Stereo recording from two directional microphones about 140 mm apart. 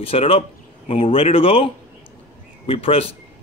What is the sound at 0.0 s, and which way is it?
Speech, 45° left (ahead or behind).